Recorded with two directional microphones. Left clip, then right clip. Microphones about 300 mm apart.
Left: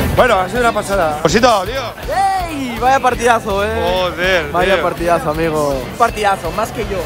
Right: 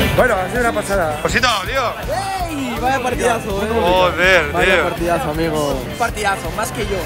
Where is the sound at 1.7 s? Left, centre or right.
Centre.